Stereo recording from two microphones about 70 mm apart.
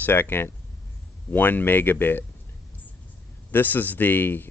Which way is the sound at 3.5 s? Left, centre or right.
Left.